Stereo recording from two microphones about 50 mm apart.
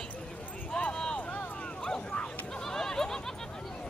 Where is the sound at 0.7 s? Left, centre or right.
Centre.